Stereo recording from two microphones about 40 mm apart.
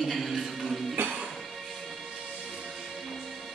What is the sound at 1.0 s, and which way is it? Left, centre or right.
Music, right.